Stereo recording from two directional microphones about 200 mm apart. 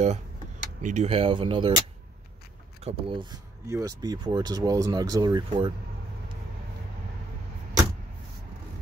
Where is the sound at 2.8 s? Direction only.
25° right (ahead or behind).